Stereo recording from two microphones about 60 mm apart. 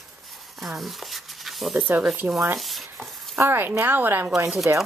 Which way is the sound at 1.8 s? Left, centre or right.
Right.